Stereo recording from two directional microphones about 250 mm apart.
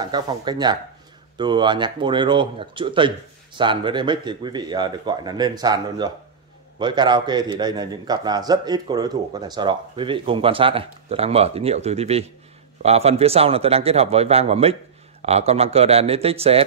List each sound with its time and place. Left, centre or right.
0.0 s a man's voice: centre